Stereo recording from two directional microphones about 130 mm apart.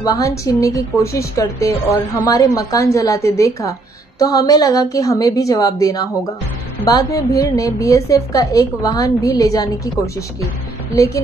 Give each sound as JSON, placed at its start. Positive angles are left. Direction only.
{"t": 0.0, "sound": "a woman's voice", "side_deg": 25}